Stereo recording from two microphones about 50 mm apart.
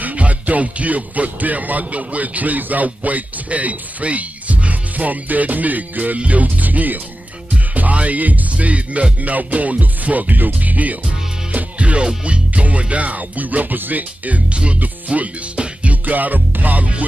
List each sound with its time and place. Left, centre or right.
0.0 s music: right
12.3 s speech: right
14.8 s music: right